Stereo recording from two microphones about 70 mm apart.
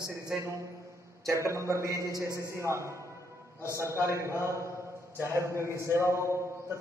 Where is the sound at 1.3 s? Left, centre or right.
Right.